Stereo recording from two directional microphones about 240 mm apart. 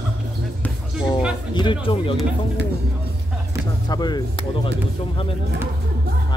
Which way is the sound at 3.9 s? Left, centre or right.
Centre.